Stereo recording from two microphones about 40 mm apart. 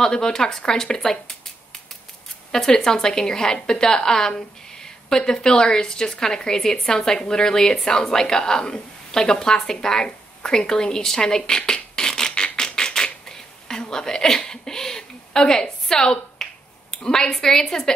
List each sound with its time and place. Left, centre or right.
0.0 s a woman's voice: centre
2.7 s a woman's voice: centre
12.5 s typewriter: centre
16.9 s a woman's voice: centre